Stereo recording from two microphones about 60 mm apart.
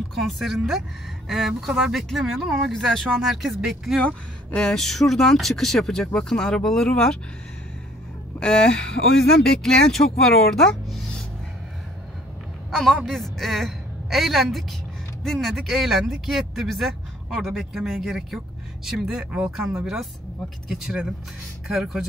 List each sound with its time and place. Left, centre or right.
0.1 s speech: centre
2.4 s speech: centre
2.7 s speech: centre
4.6 s speech: centre
8.4 s speech: centre
12.7 s speech: centre